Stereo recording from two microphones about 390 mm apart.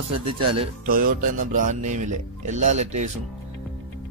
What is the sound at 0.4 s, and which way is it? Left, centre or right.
Speech, centre.